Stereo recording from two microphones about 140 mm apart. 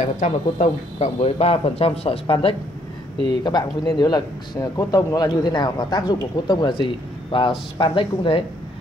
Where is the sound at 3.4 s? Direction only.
30° left (ahead or behind).